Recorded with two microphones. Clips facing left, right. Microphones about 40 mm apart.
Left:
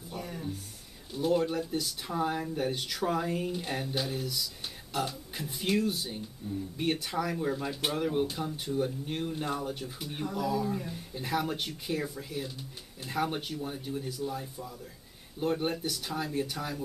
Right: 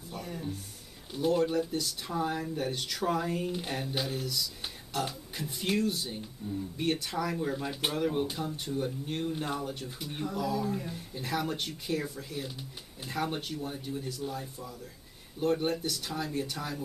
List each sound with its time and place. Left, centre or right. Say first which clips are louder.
0.1 s a sound: even; centre
1.1 s speech: right 1 dB; centre
6.8 s speech: even; centre